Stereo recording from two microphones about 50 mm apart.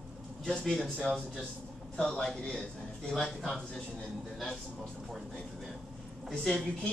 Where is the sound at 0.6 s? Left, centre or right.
Centre.